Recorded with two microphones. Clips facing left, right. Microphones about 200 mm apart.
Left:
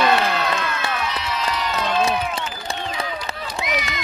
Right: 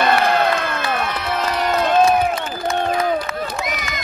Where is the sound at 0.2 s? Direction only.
55° right (ahead or behind).